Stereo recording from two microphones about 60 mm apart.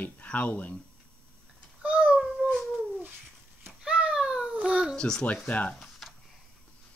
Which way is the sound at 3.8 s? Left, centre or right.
Centre.